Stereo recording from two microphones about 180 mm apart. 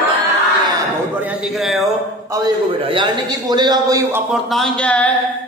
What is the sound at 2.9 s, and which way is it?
A man's voice, 25° right (ahead or behind).